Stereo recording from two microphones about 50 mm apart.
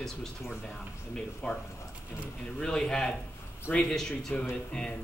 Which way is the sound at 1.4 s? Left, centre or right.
Left.